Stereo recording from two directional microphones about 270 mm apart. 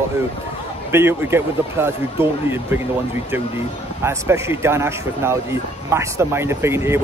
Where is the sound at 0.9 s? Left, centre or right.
Centre.